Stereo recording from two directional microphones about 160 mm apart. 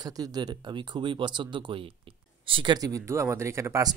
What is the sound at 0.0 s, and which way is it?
Speech, 25° right (ahead or behind).